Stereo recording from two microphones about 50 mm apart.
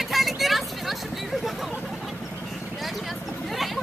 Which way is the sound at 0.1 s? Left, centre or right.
Centre.